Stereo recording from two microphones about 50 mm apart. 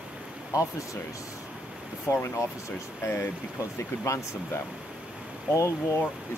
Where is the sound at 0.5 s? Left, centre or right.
Left.